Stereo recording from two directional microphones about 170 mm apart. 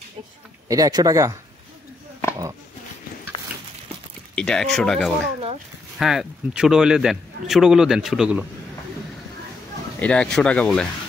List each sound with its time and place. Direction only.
0.7 s speech: 20° right (ahead or behind)
4.4 s a man's voice: 5° left (ahead or behind)
9.9 s a man's voice: 5° left (ahead or behind)